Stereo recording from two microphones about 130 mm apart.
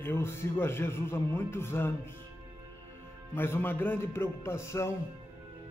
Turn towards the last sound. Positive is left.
turn(degrees=20)  # may be behind; listen again after turning